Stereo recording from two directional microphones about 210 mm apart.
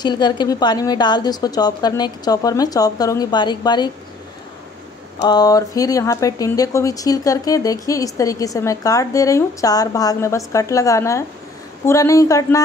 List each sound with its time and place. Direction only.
0.0 s a woman's voice: 20° left (ahead or behind)
5.2 s speech: 20° left (ahead or behind)